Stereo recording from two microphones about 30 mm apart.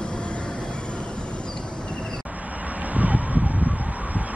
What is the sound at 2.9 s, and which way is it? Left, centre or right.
Emergency vehicle, right.